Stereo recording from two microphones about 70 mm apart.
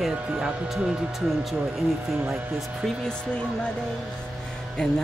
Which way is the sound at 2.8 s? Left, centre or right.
Centre.